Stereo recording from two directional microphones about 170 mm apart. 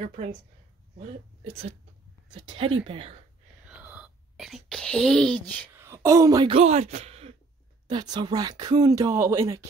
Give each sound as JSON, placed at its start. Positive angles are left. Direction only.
{"t": 0.0, "sound": "speech", "side_deg": -40}
{"t": 3.6, "sound": "whispering", "side_deg": -5}
{"t": 5.7, "sound": "speech", "side_deg": -15}
{"t": 6.5, "sound": "speech", "side_deg": -40}
{"t": 7.9, "sound": "speech", "side_deg": -25}